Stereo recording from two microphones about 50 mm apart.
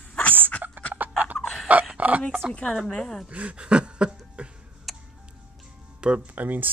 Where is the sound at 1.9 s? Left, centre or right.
Right.